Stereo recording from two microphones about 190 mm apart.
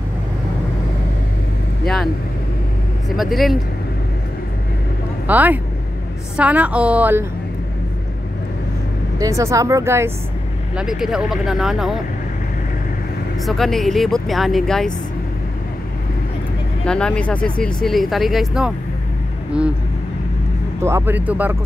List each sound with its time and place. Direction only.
3.2 s speech: centre (ahead or behind)
5.2 s a woman's voice: 10° right (ahead or behind)
9.2 s a woman's voice: 15° right (ahead or behind)
10.8 s speech: 5° right (ahead or behind)
13.5 s speech: centre (ahead or behind)
16.8 s speech: 5° left (ahead or behind)
20.8 s a woman's voice: 10° right (ahead or behind)